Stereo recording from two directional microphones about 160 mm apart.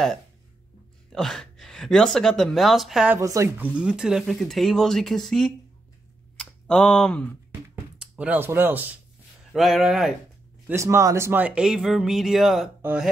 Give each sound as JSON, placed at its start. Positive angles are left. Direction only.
{"t": 1.1, "sound": "speech", "side_deg": 0}
{"t": 3.2, "sound": "speech", "side_deg": -20}
{"t": 6.3, "sound": "a sound", "side_deg": 5}
{"t": 7.7, "sound": "a sound", "side_deg": -10}
{"t": 9.5, "sound": "speech", "side_deg": 0}
{"t": 10.7, "sound": "speech", "side_deg": -15}